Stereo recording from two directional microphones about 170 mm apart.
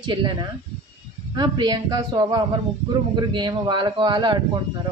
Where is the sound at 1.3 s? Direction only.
25° right (ahead or behind).